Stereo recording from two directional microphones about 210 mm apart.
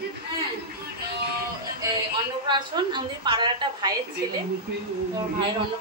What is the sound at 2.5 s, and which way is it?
A woman's voice, 20° right (ahead or behind).